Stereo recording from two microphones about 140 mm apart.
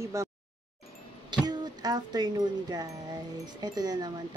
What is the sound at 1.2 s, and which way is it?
Speech, 30° right (ahead or behind).